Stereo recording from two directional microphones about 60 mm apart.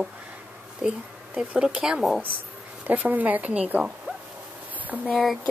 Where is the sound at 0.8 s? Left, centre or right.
Centre.